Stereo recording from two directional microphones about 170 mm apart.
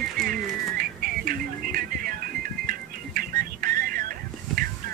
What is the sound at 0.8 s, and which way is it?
Music, 55° right (ahead or behind).